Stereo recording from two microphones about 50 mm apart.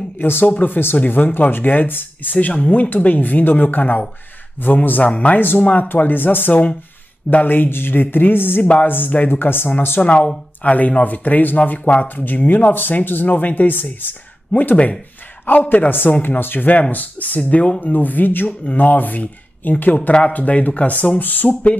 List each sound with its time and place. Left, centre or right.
0.2 s speech: left
2.3 s speech: left
5.6 s speech: left
5.9 s speech: left
10.0 s speech: left
12.3 s speech: left
15.4 s a man's voice: left
20.1 s speech: centre
20.3 s speech: left